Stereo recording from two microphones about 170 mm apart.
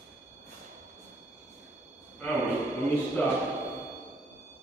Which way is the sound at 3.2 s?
10° left (ahead or behind).